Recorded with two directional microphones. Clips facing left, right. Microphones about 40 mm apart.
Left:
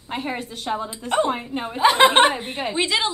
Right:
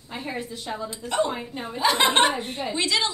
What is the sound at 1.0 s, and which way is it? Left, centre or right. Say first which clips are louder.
Speech: left 2 dB; left.